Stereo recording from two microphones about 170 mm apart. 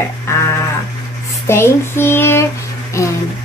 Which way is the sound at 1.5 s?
15° left (ahead or behind).